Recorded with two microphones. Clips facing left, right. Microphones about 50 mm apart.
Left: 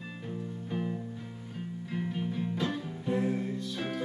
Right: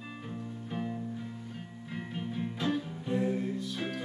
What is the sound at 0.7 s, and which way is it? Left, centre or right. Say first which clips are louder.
Music: left 2 dB; centre.